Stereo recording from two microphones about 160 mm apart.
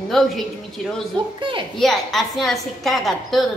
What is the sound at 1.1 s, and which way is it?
Speech, 30° right (ahead or behind).